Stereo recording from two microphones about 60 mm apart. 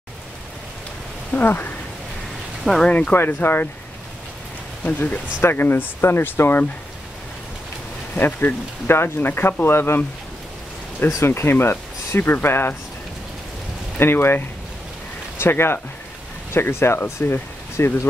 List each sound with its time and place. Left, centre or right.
1.3 s speech: left
2.6 s speech: centre
2.9 s speech: left
3.2 s speech: left
4.8 s speech: left
5.4 s speech: left
8.2 s speech: left
11.1 s speech: left
11.5 s speech: left
13.9 s speech: left